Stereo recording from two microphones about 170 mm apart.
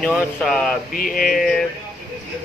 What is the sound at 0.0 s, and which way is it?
Speech, 5° left (ahead or behind).